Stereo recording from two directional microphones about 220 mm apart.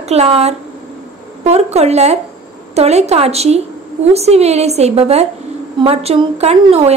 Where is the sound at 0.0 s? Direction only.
30° right (ahead or behind).